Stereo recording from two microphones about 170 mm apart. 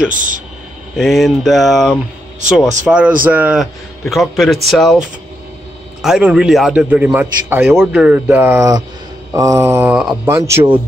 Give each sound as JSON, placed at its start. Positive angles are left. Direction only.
{"t": 0.1, "sound": "speech", "side_deg": -50}
{"t": 0.9, "sound": "a man's voice", "side_deg": 0}
{"t": 6.0, "sound": "a man's voice", "side_deg": -5}